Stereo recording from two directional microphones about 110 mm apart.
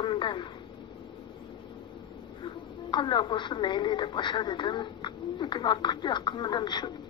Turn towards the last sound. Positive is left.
turn(degrees=40)  # may be behind; listen again after turning